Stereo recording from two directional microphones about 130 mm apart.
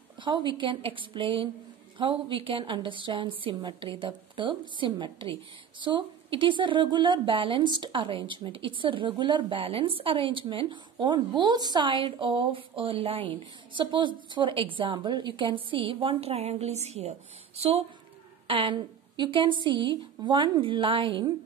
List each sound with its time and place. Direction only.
0.2 s a woman's voice: 40° right (ahead or behind)